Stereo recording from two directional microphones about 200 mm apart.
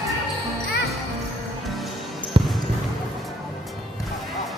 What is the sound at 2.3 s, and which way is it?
Basketball bounce, 25° right (ahead or behind).